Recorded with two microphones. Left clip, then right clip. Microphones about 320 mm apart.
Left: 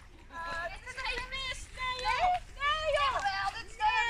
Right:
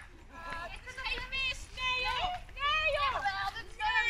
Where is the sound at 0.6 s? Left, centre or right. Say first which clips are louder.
Left 4 dB; centre.